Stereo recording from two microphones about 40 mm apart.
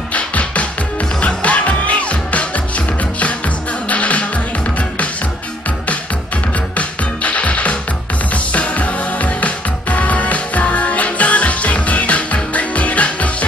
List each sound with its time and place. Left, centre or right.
0.1 s music: left
3.9 s music: left
6.8 s music: left